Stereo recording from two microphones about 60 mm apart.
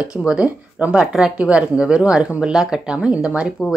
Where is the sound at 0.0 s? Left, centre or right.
Centre.